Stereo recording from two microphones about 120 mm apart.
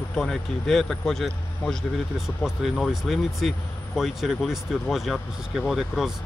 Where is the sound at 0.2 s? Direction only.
Centre (ahead or behind).